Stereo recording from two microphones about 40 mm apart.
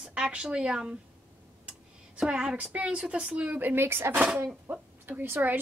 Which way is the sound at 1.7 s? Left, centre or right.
Centre.